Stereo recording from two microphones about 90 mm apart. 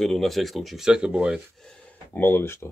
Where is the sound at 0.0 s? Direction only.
Centre (ahead or behind).